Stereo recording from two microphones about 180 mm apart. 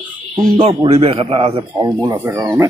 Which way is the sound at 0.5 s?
35° right (ahead or behind).